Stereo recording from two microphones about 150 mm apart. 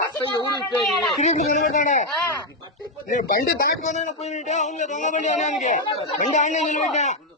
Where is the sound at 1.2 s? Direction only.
55° left (ahead or behind).